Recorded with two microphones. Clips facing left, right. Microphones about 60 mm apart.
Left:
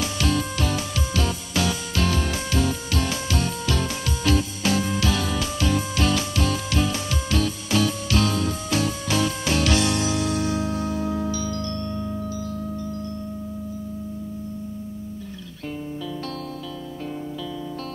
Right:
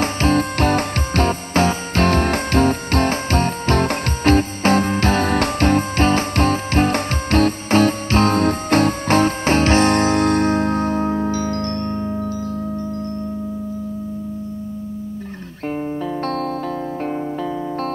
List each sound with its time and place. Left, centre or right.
0.0 s music: right